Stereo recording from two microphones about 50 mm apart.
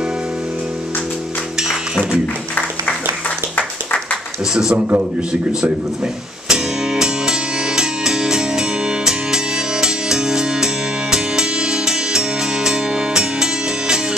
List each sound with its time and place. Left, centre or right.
1.6 s music: centre
4.7 s a man's voice: right
6.5 s music: centre